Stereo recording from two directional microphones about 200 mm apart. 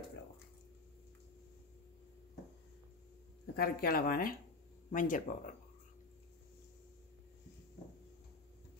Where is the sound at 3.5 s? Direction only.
50° left (ahead or behind).